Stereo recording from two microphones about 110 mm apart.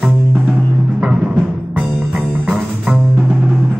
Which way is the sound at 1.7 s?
10° right (ahead or behind).